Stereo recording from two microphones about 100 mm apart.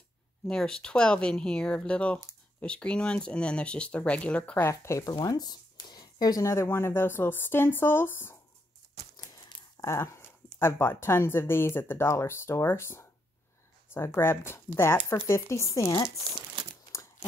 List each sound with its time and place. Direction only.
0.5 s speech: 5° left (ahead or behind)
4.6 s speech: 30° left (ahead or behind)
9.1 s a sound: 40° left (ahead or behind)
9.8 s speech: 30° left (ahead or behind)